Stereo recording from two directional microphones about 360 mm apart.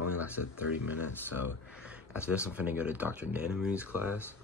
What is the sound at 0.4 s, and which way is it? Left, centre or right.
Speech, left.